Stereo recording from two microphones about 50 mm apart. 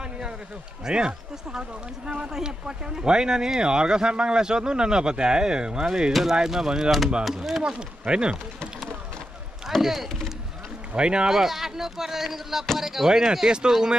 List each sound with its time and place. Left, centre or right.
0.8 s speech: centre
9.8 s speech: centre
10.9 s speech: centre